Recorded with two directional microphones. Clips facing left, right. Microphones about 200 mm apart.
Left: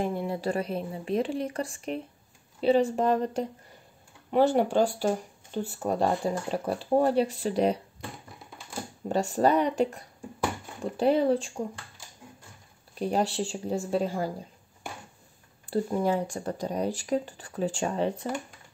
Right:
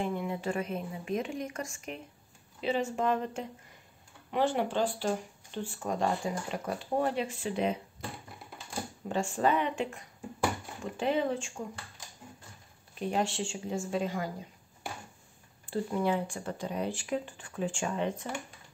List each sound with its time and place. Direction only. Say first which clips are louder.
0.0 s speech: left 4 dB; 35° left (ahead or behind)
9.1 s speech: left 5 dB; 40° left (ahead or behind)
13.0 s speech: left 4 dB; 35° left (ahead or behind)
15.7 s speech: left 4 dB; 40° left (ahead or behind)